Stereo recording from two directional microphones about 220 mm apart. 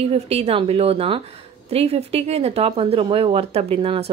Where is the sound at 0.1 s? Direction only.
30° right (ahead or behind).